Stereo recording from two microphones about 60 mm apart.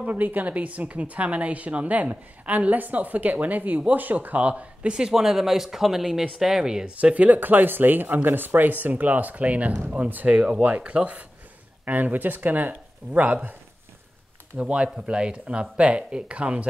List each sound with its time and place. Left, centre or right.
0.0 s a woman's voice: right; by 6.9 s centre
7.0 s a woman's voice: right
14.6 s speech: centre